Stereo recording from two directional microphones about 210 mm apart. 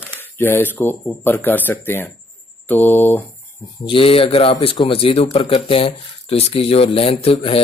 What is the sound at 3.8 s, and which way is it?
Speech, 25° left (ahead or behind).